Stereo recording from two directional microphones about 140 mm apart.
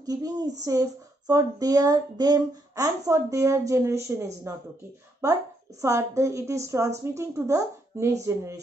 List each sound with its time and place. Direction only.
0.0 s speech: 25° right (ahead or behind)